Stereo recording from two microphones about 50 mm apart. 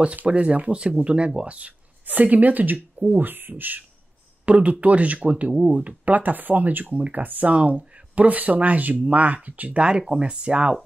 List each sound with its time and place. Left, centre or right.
0.0 s speech: right
4.5 s speech: right